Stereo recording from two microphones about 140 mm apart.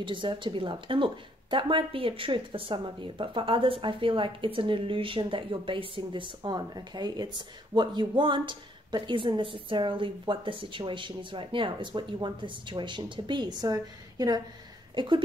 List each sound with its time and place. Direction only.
0.0 s a woman's voice: 35° right (ahead or behind)